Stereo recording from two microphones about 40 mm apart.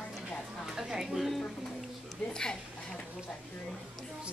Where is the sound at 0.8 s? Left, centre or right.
Centre.